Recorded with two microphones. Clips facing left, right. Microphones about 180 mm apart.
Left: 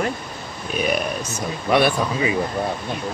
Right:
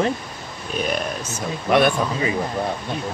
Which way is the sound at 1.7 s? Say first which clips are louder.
Right 1 dB; 10° left (ahead or behind).